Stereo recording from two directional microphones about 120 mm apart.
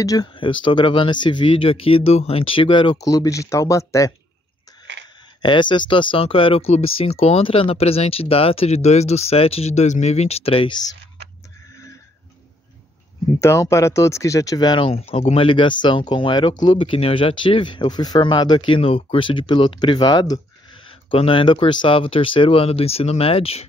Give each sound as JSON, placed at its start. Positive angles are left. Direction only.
{"t": 0.0, "sound": "speech", "side_deg": 30}
{"t": 0.3, "sound": "speech", "side_deg": 45}
{"t": 3.0, "sound": "speech", "side_deg": 30}
{"t": 5.4, "sound": "speech", "side_deg": 40}
{"t": 13.4, "sound": "speech", "side_deg": 25}
{"t": 14.9, "sound": "speech", "side_deg": 55}
{"t": 18.8, "sound": "speech", "side_deg": 55}